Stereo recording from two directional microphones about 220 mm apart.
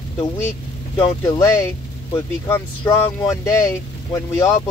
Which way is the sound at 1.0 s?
15° left (ahead or behind).